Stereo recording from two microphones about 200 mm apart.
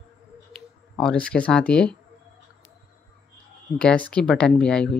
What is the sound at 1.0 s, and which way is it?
Speech, 5° left (ahead or behind).